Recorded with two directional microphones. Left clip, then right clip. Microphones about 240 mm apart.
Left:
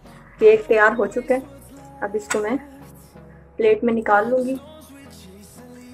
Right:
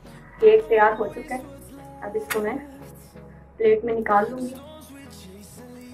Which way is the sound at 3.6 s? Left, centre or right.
Left.